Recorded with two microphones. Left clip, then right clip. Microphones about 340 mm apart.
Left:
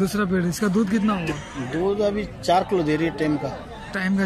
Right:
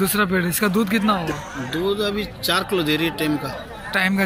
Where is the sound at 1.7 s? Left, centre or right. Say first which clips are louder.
Even; centre.